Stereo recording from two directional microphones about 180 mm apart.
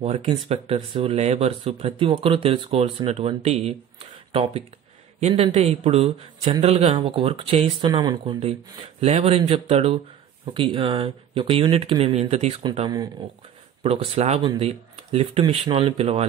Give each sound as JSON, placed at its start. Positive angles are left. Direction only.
{"t": 0.0, "sound": "speech", "side_deg": -40}
{"t": 7.9, "sound": "speech", "side_deg": -25}
{"t": 9.0, "sound": "speech", "side_deg": -35}
{"t": 13.8, "sound": "speech", "side_deg": -35}